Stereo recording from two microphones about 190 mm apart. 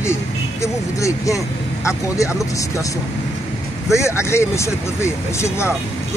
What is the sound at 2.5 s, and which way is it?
Speech, 15° left (ahead or behind).